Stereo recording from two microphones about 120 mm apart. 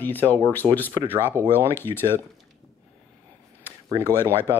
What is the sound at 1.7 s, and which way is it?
Speech, 20° left (ahead or behind).